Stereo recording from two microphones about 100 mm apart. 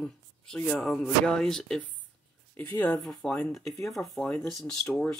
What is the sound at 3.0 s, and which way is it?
Speech, centre (ahead or behind).